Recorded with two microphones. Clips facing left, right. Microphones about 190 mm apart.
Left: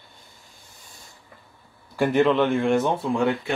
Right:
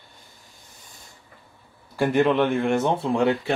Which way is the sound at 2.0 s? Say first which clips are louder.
Even; 15° right (ahead or behind).